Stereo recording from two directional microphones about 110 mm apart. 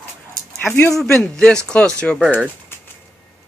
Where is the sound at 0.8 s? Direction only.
5° left (ahead or behind).